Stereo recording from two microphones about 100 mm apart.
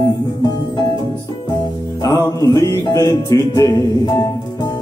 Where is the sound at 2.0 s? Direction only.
35° left (ahead or behind).